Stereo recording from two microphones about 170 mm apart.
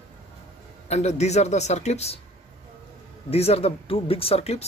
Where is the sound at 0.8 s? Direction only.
40° left (ahead or behind).